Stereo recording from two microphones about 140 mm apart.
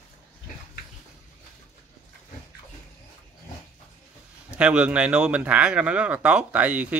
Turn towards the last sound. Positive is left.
turn(degrees=-10)  # may be behind; listen again after turning